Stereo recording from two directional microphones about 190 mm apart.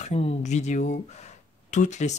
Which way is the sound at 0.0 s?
35° left (ahead or behind).